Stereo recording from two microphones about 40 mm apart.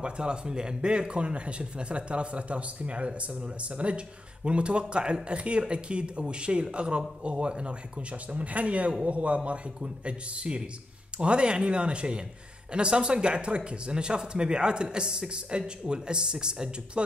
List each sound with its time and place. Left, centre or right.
0.0 s speech: right